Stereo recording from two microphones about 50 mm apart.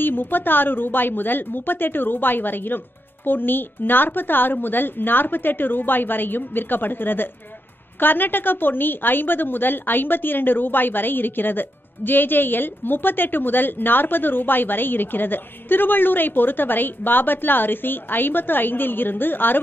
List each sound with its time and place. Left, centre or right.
0.0 s a woman's voice: left